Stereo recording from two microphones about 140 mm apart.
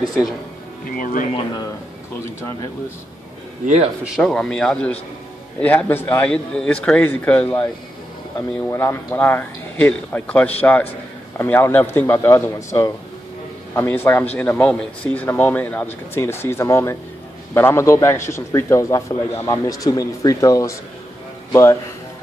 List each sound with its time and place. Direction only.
0.0 s a man's voice: centre (ahead or behind)
0.8 s speech: 80° left
3.6 s speech: 50° right (ahead or behind)
4.0 s a man's voice: centre (ahead or behind); by 20.7 s 25° left (ahead or behind)